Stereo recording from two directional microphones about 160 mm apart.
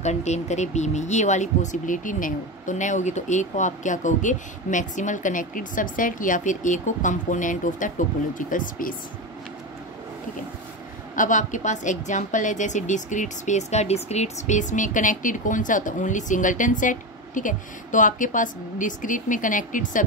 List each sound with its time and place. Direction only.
0.0 s speech: 45° left (ahead or behind)
11.1 s speech: 50° left (ahead or behind)